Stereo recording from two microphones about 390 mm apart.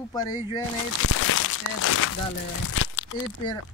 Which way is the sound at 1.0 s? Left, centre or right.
Left.